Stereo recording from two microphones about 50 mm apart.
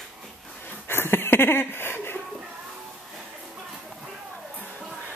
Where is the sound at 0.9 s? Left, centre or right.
Left.